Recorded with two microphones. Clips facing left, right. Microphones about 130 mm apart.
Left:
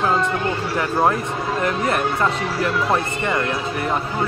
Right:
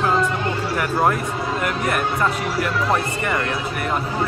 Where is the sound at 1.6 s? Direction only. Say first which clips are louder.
Left 3 dB; 30° left (ahead or behind).